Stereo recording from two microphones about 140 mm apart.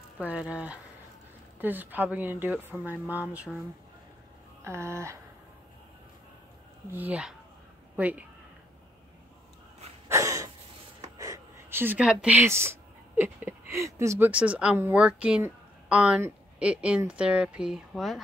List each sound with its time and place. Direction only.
0.2 s speech: 10° right (ahead or behind)
4.6 s a sound: 20° right (ahead or behind)
6.9 s speech: 10° right (ahead or behind)
10.0 s a sound: 20° right (ahead or behind)
11.1 s speech: 20° right (ahead or behind)
14.3 s speech: 10° right (ahead or behind)